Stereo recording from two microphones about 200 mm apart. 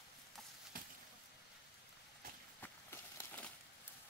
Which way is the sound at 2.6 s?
10° left (ahead or behind).